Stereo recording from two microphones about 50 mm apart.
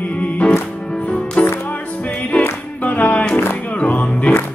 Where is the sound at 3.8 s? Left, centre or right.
Left.